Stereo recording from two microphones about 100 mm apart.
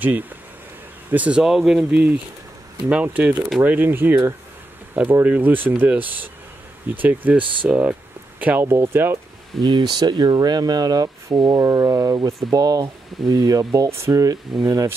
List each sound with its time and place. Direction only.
1.1 s speech: 15° right (ahead or behind)
1.4 s speech: 5° right (ahead or behind)
1.9 s speech: 15° right (ahead or behind)
9.6 s speech: 45° right (ahead or behind); by 15.0 s 30° right (ahead or behind)